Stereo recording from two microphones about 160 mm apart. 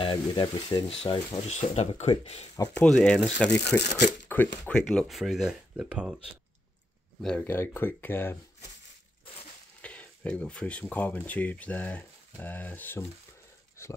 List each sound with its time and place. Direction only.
0.0 s speech: 25° left (ahead or behind)
2.7 s speech: 5° left (ahead or behind)
7.2 s speech: 5° left (ahead or behind)
9.8 s speech: 10° left (ahead or behind)